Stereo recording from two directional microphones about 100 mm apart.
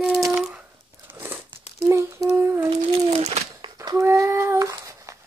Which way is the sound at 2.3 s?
25° right (ahead or behind).